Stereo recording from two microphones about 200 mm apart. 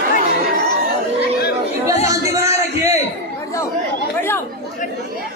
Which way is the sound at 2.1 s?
15° right (ahead or behind).